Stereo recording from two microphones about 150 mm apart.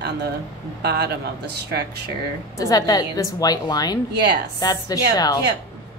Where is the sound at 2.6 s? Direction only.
25° left (ahead or behind).